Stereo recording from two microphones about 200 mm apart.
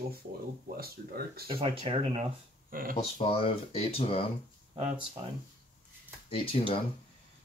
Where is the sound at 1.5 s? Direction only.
30° right (ahead or behind).